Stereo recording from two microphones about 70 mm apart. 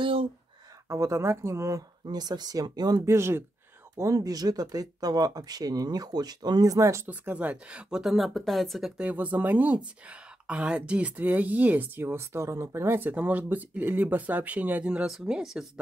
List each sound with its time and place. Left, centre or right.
0.8 s speech: right
2.0 s speech: right
3.1 s speech: right
3.9 s speech: right
7.1 s a woman's voice: right
8.0 s speech: centre
9.0 s a woman's voice: right